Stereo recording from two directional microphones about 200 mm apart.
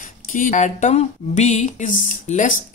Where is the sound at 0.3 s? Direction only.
40° left (ahead or behind).